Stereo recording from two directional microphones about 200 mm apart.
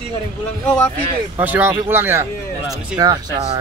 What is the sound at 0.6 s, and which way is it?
Speech, 10° left (ahead or behind).